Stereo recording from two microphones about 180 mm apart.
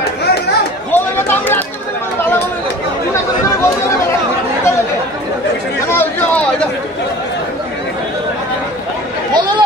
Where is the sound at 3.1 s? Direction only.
15° left (ahead or behind).